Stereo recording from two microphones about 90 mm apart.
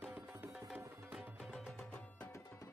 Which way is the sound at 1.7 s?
10° left (ahead or behind).